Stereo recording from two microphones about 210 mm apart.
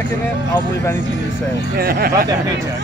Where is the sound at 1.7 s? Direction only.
45° right (ahead or behind).